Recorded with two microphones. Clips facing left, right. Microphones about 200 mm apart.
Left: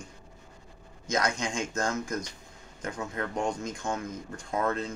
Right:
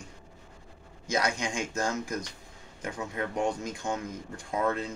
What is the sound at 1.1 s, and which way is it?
Speech, 10° right (ahead or behind).